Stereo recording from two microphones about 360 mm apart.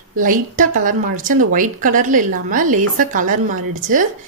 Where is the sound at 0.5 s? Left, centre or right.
Right.